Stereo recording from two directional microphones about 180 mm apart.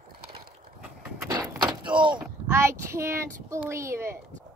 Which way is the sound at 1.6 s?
25° right (ahead or behind).